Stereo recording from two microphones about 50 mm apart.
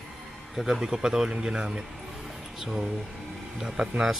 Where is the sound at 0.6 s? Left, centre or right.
Centre.